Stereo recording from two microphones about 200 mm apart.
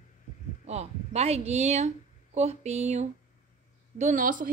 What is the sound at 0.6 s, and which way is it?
A woman's voice, 35° right (ahead or behind).